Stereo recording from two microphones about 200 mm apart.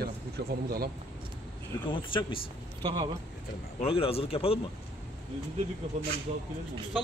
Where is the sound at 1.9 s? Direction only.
25° left (ahead or behind).